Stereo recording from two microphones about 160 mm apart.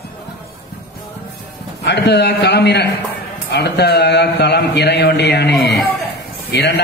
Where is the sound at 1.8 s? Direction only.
90° left.